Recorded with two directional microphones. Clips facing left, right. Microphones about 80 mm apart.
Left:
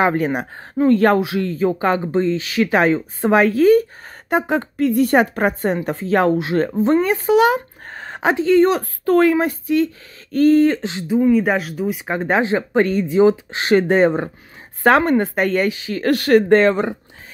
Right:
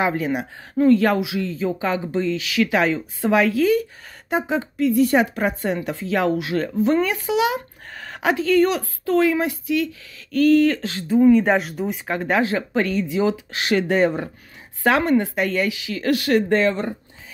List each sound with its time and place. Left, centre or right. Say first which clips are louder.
0.0 s a woman's voice: left 4 dB; left
2.2 s speech: left 3 dB; left
4.3 s a woman's voice: left 4 dB; left
7.2 s a woman's voice: left 6 dB; left
7.9 s a sound: left 3 dB; left
9.0 s a woman's voice: left 4 dB; left
11.1 s speech: right 1 dB; centre
12.1 s speech: left 2 dB; left
14.8 s a woman's voice: left 4 dB; left